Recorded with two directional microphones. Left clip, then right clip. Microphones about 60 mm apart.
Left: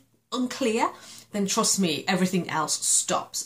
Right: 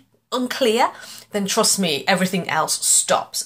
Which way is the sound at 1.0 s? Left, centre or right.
Left.